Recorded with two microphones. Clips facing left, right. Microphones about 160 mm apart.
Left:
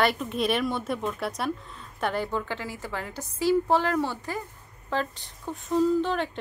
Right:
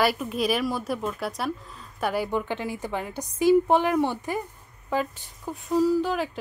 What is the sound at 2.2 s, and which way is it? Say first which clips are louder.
A woman's voice: right 3 dB; 20° right (ahead or behind).